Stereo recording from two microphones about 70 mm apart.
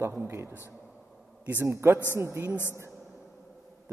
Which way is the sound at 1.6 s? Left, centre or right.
Right.